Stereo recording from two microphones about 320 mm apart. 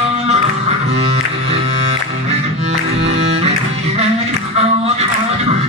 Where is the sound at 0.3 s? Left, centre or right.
Centre.